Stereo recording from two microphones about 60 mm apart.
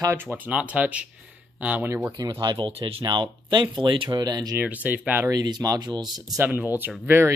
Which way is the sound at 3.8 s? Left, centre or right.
Centre.